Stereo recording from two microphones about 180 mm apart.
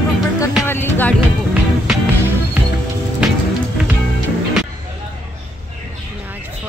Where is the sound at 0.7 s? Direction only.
10° left (ahead or behind).